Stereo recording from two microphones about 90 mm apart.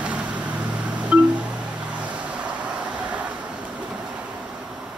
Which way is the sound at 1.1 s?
10° right (ahead or behind).